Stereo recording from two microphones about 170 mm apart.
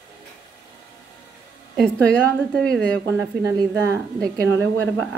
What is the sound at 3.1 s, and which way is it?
A woman's voice, 15° right (ahead or behind).